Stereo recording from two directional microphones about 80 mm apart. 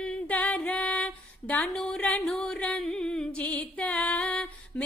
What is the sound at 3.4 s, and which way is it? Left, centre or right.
Music, centre.